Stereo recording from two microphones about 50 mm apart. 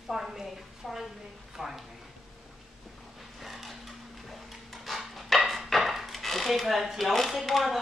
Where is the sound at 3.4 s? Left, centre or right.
Centre.